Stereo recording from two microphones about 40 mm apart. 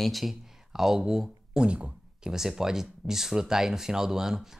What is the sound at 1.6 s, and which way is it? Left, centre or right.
Speech, right.